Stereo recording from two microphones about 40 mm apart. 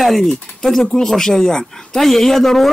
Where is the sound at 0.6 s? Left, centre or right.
Centre.